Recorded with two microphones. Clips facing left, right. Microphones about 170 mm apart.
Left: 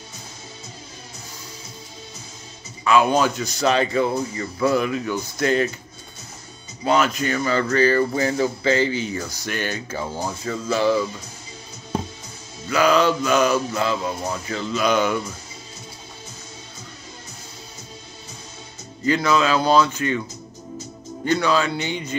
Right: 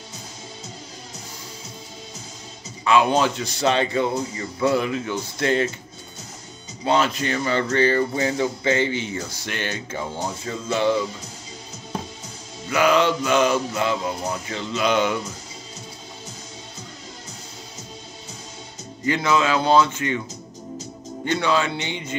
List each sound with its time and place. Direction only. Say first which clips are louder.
3.1 s music: left 1 dB; 25° right (ahead or behind)
6.8 s music: left 1 dB; 30° right (ahead or behind)
12.6 s music: left 1 dB; 20° right (ahead or behind)
19.0 s music: left 1 dB; 25° right (ahead or behind)
21.3 s music: left 2 dB; 25° right (ahead or behind)